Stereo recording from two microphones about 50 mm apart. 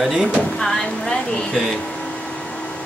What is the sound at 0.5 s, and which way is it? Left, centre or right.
Speech, centre.